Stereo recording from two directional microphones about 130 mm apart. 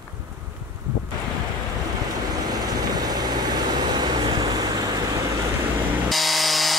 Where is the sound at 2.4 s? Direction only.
30° right (ahead or behind).